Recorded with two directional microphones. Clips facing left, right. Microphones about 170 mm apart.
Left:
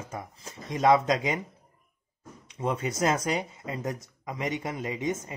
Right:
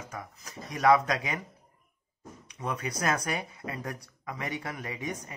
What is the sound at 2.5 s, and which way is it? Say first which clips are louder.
Speech: left 5 dB; 25° left (ahead or behind).